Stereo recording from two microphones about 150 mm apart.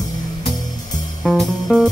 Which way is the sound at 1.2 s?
Centre (ahead or behind).